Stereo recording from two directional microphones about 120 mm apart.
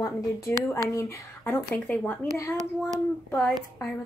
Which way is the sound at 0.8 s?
25° left (ahead or behind).